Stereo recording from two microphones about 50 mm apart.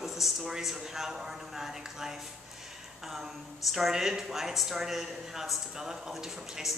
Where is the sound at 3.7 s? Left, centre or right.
Centre.